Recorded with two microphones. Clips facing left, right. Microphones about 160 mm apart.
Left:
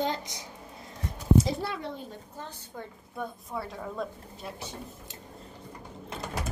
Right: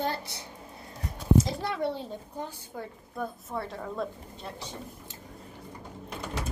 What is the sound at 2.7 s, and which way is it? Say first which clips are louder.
A woman's voice: right 1 dB; centre (ahead or behind).